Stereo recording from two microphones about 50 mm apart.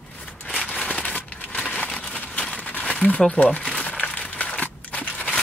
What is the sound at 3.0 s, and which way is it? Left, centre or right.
Speech, left.